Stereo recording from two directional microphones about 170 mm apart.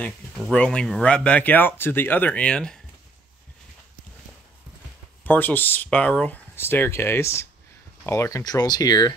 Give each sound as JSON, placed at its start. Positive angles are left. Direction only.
{"t": 0.4, "sound": "speech", "side_deg": 5}
{"t": 5.2, "sound": "speech", "side_deg": 10}